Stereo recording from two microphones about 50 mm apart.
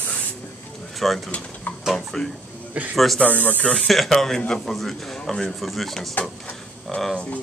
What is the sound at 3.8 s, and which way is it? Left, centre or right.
Speech, centre.